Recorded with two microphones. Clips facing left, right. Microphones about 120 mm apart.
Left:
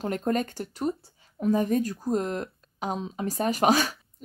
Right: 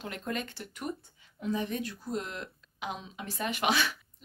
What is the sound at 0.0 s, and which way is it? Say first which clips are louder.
Speech: left 9 dB; 40° left (ahead or behind).